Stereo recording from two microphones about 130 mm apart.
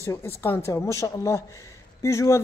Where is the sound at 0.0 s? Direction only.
20° left (ahead or behind).